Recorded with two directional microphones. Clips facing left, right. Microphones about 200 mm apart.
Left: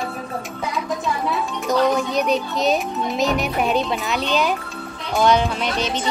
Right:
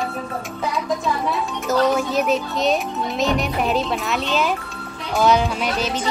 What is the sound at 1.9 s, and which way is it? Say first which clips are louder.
Speech: even; centre (ahead or behind).